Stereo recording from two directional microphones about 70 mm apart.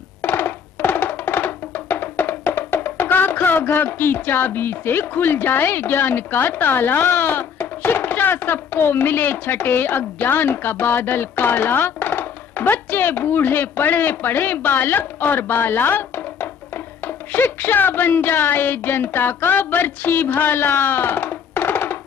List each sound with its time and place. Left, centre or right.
0.2 s music: left
17.3 s a woman's voice: left